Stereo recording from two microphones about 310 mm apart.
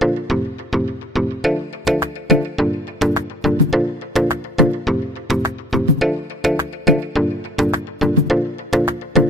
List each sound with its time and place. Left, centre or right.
0.0 s music: centre